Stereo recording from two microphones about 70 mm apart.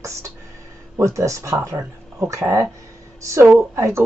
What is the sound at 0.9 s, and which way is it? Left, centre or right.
Speech, right.